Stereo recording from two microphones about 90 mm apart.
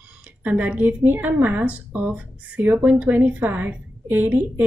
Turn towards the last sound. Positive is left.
turn(degrees=-20)  # may be behind; listen again after turning